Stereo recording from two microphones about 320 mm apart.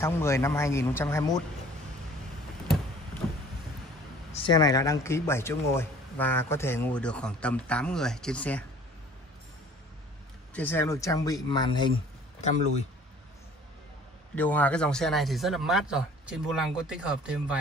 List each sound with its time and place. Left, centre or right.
0.0 s speech: centre
4.3 s speech: centre
10.5 s speech: centre
14.3 s speech: centre